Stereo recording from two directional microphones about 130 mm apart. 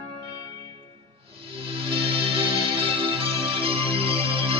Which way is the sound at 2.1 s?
50° right (ahead or behind).